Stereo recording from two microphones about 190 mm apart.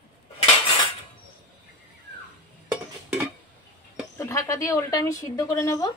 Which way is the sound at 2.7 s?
15° right (ahead or behind).